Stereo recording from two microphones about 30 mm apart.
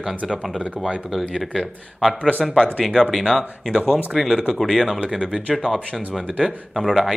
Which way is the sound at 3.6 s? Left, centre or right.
Centre.